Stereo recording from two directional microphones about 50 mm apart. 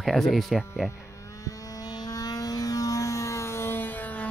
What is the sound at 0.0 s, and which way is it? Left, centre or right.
Speech, centre.